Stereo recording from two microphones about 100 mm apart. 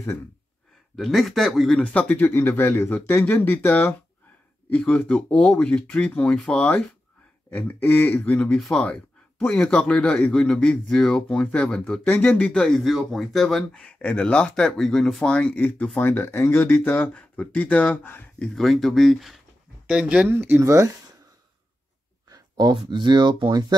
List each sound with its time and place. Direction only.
0.9 s speech: centre (ahead or behind)
18.5 s speech: 5° left (ahead or behind)
20.2 s speech: 25° right (ahead or behind)
22.3 s a sound: 40° right (ahead or behind)
22.8 s speech: 50° right (ahead or behind)